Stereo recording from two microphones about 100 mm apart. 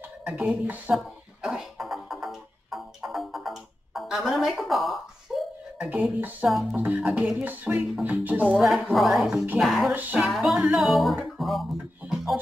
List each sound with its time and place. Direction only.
0.2 s speech: 15° right (ahead or behind)
0.9 s music: 5° right (ahead or behind)
5.8 s beatboxing: 15° right (ahead or behind)
6.4 s speech: 10° right (ahead or behind)
7.3 s speech: 15° right (ahead or behind)
8.9 s music: centre (ahead or behind)